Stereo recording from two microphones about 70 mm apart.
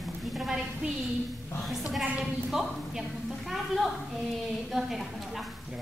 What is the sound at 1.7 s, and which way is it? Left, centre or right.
A woman's voice, centre.